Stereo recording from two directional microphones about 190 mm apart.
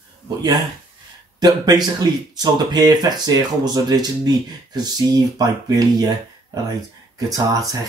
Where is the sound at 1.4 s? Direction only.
20° right (ahead or behind).